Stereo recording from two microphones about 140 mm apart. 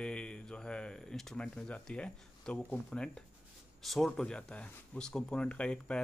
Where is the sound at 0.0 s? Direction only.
5° left (ahead or behind).